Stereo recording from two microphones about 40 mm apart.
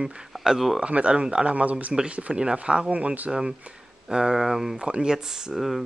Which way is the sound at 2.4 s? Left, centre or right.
Right.